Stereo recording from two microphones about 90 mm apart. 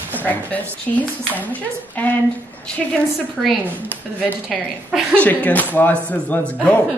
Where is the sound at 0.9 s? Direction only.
10° left (ahead or behind).